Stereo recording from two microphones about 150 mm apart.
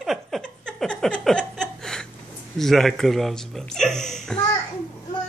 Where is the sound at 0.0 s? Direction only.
Centre (ahead or behind).